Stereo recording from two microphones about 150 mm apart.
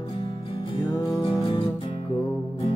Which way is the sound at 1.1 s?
35° left (ahead or behind).